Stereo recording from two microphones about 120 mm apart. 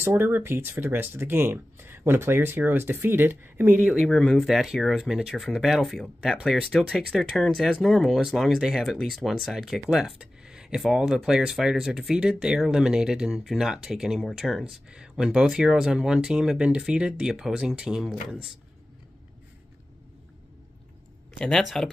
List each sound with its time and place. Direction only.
0.0 s speech: 15° right (ahead or behind)
4.0 s speech: 5° left (ahead or behind)
21.5 s speech: 5° left (ahead or behind)